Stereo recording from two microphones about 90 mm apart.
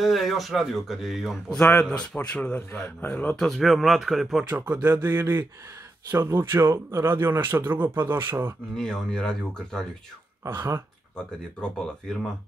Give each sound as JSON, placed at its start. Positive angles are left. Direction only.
{"t": 0.0, "sound": "speech", "side_deg": 0}
{"t": 1.6, "sound": "speech", "side_deg": 15}
{"t": 3.3, "sound": "speech", "side_deg": 0}
{"t": 4.5, "sound": "speech", "side_deg": -20}
{"t": 8.7, "sound": "speech", "side_deg": 5}
{"t": 11.6, "sound": "speech", "side_deg": 10}